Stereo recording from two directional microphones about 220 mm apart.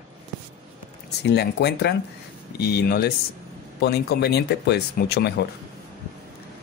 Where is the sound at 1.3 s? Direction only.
50° left (ahead or behind).